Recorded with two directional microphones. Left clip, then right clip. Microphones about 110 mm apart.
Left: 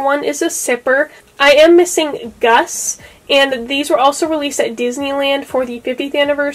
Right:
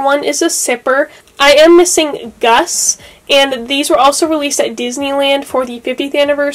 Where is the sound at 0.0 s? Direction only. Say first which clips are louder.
Right 3 dB; 20° right (ahead or behind).